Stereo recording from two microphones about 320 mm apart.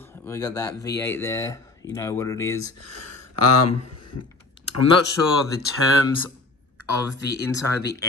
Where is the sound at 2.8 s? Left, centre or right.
Left.